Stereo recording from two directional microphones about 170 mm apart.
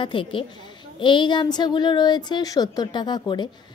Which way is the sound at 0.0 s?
30° left (ahead or behind).